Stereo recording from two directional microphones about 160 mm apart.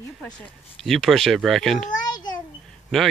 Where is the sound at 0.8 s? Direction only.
Centre (ahead or behind).